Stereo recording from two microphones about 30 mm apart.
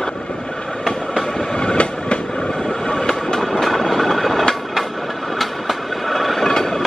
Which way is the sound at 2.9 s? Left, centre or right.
Centre.